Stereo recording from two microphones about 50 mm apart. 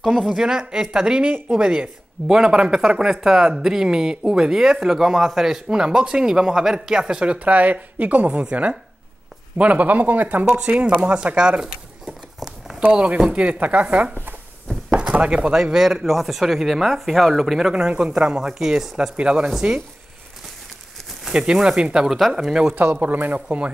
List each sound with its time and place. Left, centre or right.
0.3 s speech: centre
1.2 s speech: right
7.3 s a man's voice: right
10.4 s speech: right
12.1 s a sound: centre
12.9 s speech: right
14.9 s a sound: right
15.5 s speech: centre
21.3 s speech: centre
22.8 s a man's voice: right